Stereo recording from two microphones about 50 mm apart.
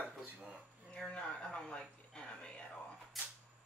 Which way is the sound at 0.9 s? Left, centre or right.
Centre.